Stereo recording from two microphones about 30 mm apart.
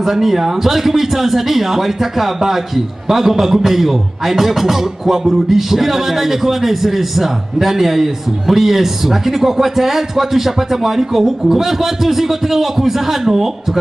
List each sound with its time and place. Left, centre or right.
0.0 s speech: centre